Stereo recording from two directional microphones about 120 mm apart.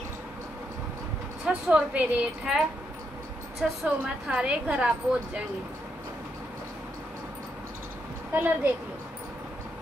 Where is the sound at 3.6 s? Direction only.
5° right (ahead or behind).